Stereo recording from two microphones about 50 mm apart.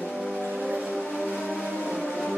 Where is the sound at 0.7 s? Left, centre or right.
Centre.